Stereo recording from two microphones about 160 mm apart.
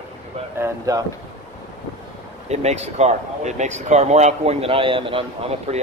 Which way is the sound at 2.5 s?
45° right (ahead or behind).